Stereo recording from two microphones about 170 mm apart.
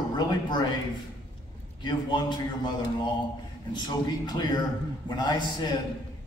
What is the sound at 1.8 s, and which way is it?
Speech, 25° left (ahead or behind).